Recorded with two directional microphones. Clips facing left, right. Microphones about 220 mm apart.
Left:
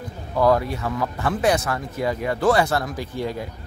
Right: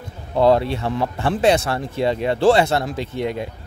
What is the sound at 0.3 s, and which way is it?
Speech, 25° right (ahead or behind).